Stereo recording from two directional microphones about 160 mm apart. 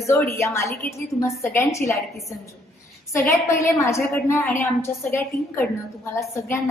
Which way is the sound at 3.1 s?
20° left (ahead or behind).